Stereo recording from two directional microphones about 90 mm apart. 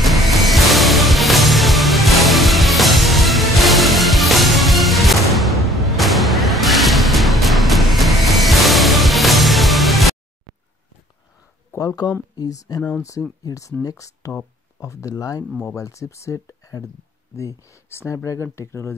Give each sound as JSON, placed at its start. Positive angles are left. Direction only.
{"t": 0.0, "sound": "music", "side_deg": 0}
{"t": 11.7, "sound": "speech", "side_deg": 40}